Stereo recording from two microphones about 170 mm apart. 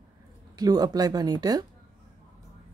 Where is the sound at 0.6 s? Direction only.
20° right (ahead or behind).